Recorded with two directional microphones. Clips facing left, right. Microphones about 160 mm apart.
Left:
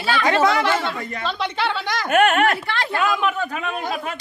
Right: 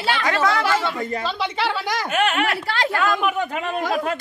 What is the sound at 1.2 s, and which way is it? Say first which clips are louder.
Speech: left 4 dB; centre (ahead or behind).